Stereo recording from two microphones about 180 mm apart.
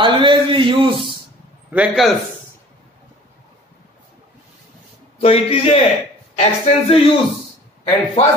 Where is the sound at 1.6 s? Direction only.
5° right (ahead or behind).